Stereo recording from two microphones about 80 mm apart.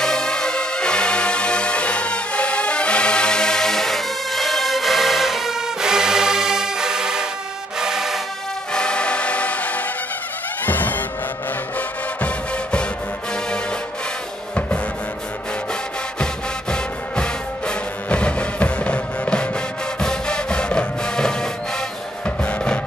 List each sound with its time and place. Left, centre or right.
0.0 s music: centre
8.7 s music: centre
16.7 s music: centre